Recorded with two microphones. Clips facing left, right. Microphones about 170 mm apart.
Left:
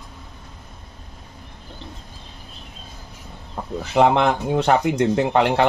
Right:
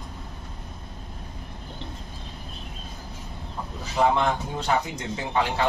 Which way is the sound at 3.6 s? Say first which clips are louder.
Left 4 dB; 55° left (ahead or behind).